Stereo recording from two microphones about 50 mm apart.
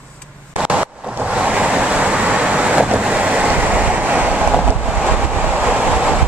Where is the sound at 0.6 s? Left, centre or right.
Centre.